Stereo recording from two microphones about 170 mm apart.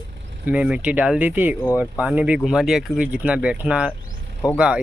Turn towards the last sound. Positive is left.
turn(degrees=-5)  # may be behind; listen again after turning